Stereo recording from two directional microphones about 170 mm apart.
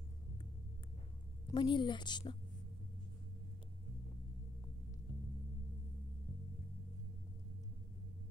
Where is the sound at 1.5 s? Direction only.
30° left (ahead or behind).